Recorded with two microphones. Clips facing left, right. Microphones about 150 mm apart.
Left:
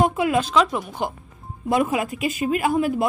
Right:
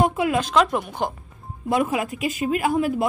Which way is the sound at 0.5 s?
5° right (ahead or behind).